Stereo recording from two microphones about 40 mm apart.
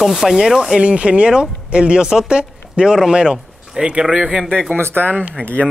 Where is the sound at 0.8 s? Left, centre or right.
Right.